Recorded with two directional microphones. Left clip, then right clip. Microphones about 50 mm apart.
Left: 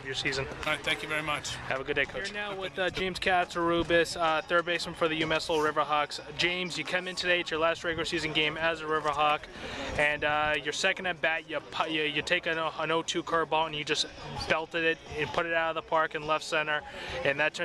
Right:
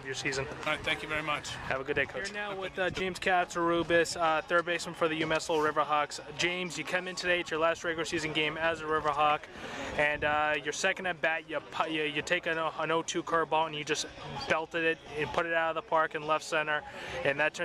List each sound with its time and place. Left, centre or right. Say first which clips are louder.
0.1 s speech: left 2 dB; right
0.7 s a man's voice: left 2 dB; centre
1.7 s speech: left 1 dB; right
3.0 s speech: left 2 dB; right
5.5 s a man's voice: even; centre
5.8 s speech: left 1 dB; right